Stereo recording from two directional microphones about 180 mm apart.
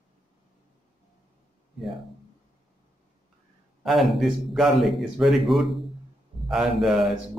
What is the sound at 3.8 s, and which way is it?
A man's voice, centre (ahead or behind).